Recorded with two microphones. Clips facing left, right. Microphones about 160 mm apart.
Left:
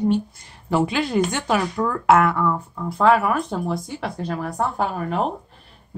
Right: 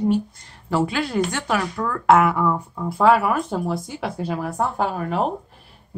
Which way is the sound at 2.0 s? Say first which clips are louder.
Right 1 dB; 5° left (ahead or behind).